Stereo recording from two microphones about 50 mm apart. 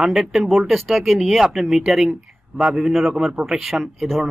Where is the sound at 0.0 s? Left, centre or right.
Centre.